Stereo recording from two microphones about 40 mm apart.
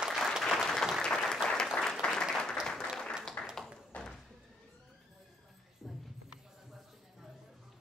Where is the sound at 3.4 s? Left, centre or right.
Left.